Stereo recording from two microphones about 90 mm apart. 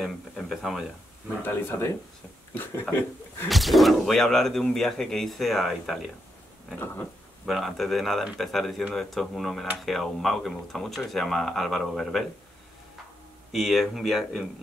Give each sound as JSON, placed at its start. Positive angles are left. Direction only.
{"t": 0.0, "sound": "speech", "side_deg": 0}
{"t": 1.4, "sound": "speech", "side_deg": 25}
{"t": 3.4, "sound": "speech", "side_deg": 0}
{"t": 7.4, "sound": "speech", "side_deg": 0}
{"t": 13.5, "sound": "speech", "side_deg": 0}